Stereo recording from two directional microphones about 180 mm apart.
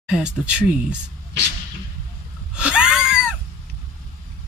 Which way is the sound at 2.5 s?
5° right (ahead or behind).